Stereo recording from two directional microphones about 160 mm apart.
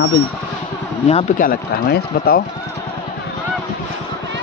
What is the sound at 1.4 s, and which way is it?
Speech, 70° left (ahead or behind).